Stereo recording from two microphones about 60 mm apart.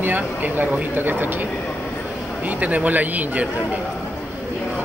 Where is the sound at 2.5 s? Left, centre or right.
Right.